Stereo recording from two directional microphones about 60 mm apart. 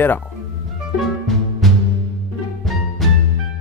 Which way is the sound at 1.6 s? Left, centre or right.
Centre.